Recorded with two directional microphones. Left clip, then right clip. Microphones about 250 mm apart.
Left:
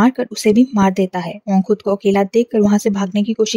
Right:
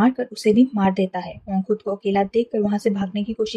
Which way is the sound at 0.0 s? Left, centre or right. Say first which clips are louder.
Left 4 dB; left.